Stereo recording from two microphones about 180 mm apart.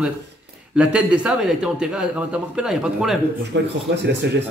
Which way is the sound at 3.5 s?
80° right.